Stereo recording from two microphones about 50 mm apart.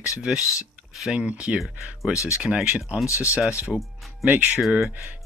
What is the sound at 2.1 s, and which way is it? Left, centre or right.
Speech, left.